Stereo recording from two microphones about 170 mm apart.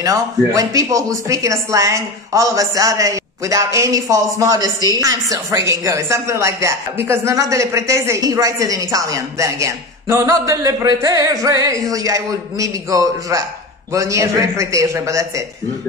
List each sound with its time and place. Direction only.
0.0 s speech: 20° right (ahead or behind)